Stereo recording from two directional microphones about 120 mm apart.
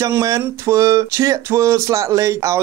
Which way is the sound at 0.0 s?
30° right (ahead or behind).